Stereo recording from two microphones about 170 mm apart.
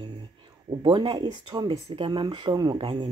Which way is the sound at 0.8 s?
25° right (ahead or behind).